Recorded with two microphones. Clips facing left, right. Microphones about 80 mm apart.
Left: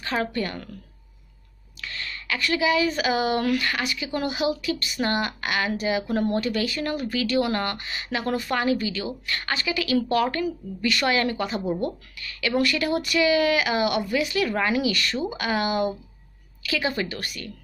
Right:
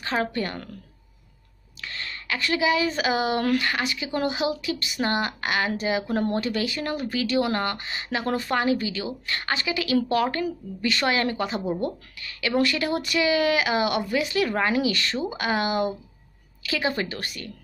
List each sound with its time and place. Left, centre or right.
0.0 s speech: right
1.8 s speech: right